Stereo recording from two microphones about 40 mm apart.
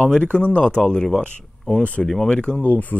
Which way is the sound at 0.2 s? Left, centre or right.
Left.